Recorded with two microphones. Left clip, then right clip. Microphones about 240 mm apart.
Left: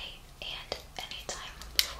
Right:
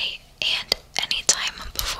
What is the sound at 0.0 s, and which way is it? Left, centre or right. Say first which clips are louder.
Whispering: right 16 dB; right.